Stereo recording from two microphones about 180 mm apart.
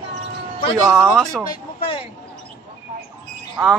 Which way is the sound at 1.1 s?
5° left (ahead or behind).